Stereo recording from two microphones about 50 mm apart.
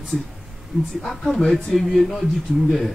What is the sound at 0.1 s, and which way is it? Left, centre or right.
A man's voice, centre.